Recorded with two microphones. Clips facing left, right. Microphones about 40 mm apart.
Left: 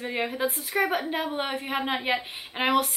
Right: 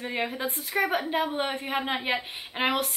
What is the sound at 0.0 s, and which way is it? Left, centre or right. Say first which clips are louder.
Speech: left 2 dB; centre.